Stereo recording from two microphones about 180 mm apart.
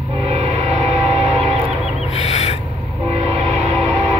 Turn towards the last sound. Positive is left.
turn(degrees=-40)  # may be behind; listen again after turning